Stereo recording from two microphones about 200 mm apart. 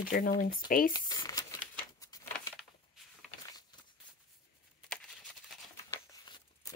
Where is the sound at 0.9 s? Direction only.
20° left (ahead or behind).